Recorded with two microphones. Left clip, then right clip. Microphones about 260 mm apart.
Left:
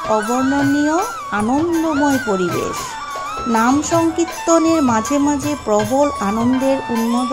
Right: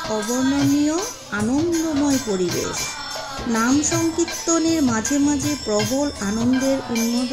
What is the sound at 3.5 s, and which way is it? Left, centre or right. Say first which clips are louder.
Music: left 5 dB; centre.